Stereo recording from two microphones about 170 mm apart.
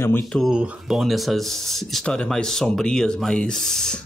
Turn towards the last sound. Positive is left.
turn(degrees=5)  # may be behind; listen again after turning